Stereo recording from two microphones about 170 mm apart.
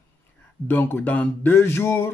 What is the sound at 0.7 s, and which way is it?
Speech, 10° left (ahead or behind).